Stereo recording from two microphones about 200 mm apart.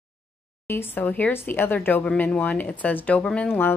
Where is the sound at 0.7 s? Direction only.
10° left (ahead or behind).